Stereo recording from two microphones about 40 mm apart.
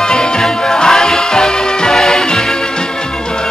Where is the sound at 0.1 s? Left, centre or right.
Centre.